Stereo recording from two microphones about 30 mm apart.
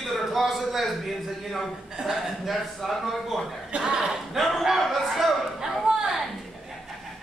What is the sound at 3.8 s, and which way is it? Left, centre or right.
Speech, right.